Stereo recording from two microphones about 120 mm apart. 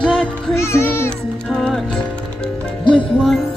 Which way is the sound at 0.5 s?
20° left (ahead or behind).